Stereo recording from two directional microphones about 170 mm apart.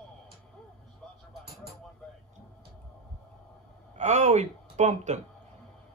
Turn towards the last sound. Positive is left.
turn(degrees=-40)  # may be behind; listen again after turning